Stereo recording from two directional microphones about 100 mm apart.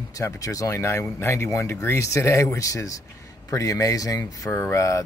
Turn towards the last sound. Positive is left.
turn(degrees=30)  # may be behind; listen again after turning